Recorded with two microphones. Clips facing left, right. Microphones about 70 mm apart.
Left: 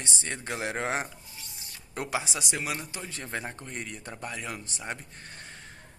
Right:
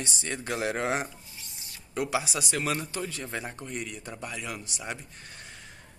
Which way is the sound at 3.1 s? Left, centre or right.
Left.